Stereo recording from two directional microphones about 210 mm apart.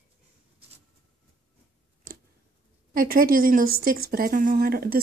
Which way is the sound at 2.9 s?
45° right (ahead or behind).